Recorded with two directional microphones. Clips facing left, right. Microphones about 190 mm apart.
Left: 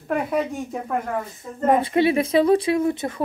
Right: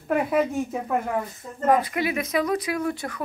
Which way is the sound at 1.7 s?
25° left (ahead or behind).